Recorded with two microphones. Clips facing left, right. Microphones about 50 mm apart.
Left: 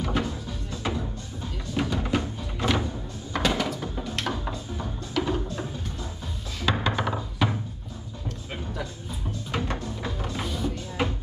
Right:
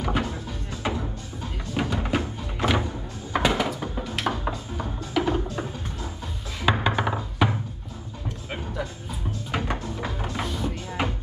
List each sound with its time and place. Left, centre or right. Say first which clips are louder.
0.0 s music: right 1 dB; centre
1.7 s music: right 1 dB; centre
3.3 s a sound: right 3 dB; centre
4.0 s music: right 4 dB; centre
9.5 s music: right 1 dB; centre
10.4 s music: even; centre
10.7 s music: even; centre